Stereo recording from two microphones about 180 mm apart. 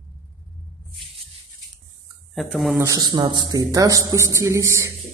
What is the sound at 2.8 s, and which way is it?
A man's voice, 20° right (ahead or behind).